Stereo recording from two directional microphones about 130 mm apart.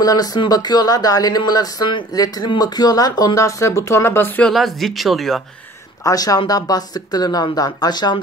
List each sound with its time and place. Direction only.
0.0 s speech: 30° left (ahead or behind)
4.5 s speech: centre (ahead or behind)
6.0 s speech: 30° left (ahead or behind)